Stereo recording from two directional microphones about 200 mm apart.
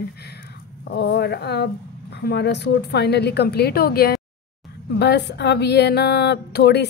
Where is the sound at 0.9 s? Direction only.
55° left (ahead or behind).